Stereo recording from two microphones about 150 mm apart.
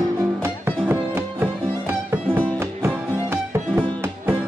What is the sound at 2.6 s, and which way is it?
Music, 10° right (ahead or behind).